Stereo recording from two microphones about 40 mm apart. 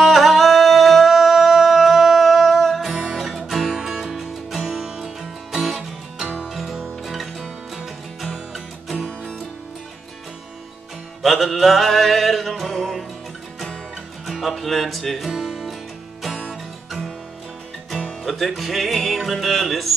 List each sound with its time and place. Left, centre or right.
0.0 s music: centre
2.9 s music: centre
3.2 s music: centre
11.2 s music: centre
14.2 s music: centre
17.9 s music: centre